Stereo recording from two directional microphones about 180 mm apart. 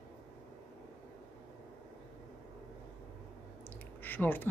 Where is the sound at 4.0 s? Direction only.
10° left (ahead or behind).